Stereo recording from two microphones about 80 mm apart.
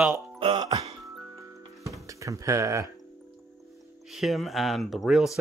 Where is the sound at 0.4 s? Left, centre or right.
Right.